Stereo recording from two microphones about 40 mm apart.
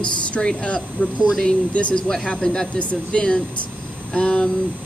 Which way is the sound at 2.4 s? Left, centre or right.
Centre.